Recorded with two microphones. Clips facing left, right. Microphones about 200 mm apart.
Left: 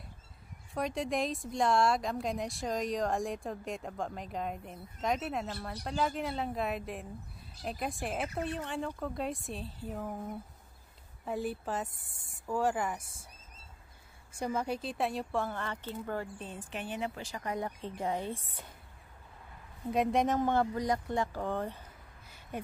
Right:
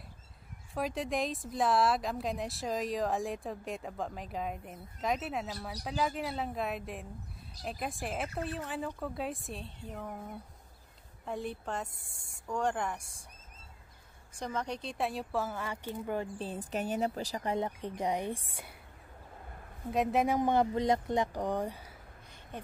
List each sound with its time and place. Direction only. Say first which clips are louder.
0.7 s speech: left 1 dB; centre (ahead or behind)
14.4 s speech: left 3 dB; 10° left (ahead or behind); by 16.3 s 15° right (ahead or behind)
16.3 s a woman's voice: right 5 dB; 35° right (ahead or behind); by 18.8 s 10° right (ahead or behind)
19.9 s speech: even; centre (ahead or behind)
20.3 s speech: right 1 dB; 15° right (ahead or behind)
22.5 s speech: left 4 dB; 10° left (ahead or behind)